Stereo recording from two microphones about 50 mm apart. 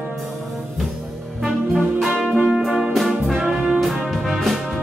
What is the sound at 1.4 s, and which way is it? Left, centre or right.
Music, centre.